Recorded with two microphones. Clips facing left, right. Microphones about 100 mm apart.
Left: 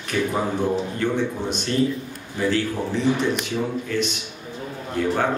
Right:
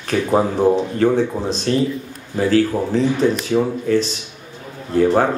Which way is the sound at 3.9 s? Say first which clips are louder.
Right 7 dB; 35° right (ahead or behind).